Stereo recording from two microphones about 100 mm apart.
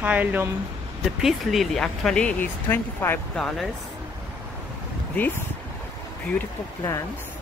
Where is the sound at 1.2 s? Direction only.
5° right (ahead or behind); by 3.2 s 20° left (ahead or behind).